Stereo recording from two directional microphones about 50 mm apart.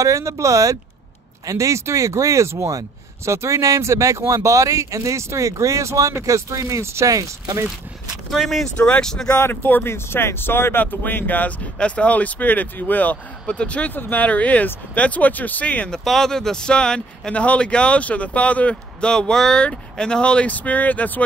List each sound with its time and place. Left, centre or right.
0.0 s speech: right
3.3 s speech: right
8.4 s speech: centre
8.7 s speech: left
9.0 s speech: centre
9.4 s speech: left
9.8 s speech: left
10.8 s speech: left
13.9 s speech: left
14.2 s speech: left
15.9 s speech: centre
20.4 s speech: left